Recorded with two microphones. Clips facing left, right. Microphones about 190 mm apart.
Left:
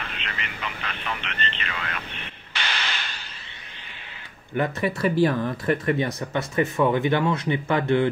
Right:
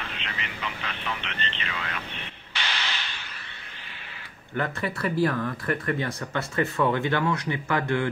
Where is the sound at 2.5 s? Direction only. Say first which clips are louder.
Left 2 dB; 50° left (ahead or behind).